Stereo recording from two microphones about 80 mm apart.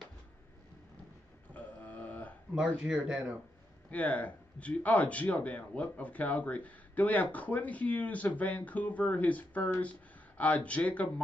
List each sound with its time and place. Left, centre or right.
1.5 s a sound: centre
2.5 s speech: centre
3.9 s speech: centre